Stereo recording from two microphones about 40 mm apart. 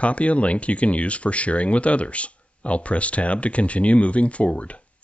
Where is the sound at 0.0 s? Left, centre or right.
Left.